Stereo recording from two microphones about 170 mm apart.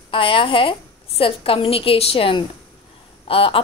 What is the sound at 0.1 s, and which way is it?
A woman's voice, 30° left (ahead or behind).